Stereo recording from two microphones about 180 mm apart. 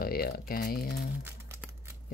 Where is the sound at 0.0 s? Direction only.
55° left (ahead or behind).